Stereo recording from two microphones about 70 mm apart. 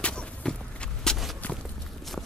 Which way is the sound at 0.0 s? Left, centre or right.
Centre.